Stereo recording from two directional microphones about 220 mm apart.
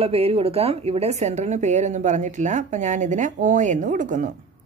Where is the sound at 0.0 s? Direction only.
25° right (ahead or behind).